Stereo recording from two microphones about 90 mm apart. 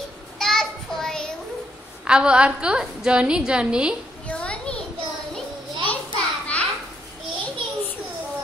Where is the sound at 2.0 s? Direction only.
10° right (ahead or behind).